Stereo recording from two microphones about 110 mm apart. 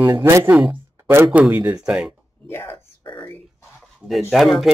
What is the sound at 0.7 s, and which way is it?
Speech, 20° right (ahead or behind).